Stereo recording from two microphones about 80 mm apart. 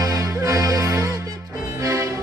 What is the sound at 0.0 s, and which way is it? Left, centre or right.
Music, right.